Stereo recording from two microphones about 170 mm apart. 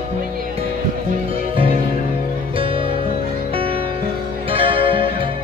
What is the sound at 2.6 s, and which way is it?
Music, 30° right (ahead or behind).